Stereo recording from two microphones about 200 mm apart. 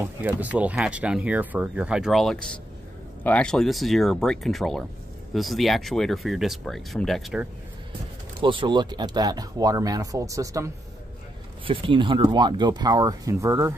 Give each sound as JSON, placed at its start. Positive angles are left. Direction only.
{"t": 0.0, "sound": "speech", "side_deg": -10}
{"t": 8.4, "sound": "speech", "side_deg": -25}